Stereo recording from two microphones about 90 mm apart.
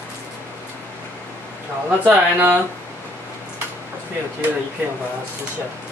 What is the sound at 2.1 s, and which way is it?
Speech, 25° right (ahead or behind).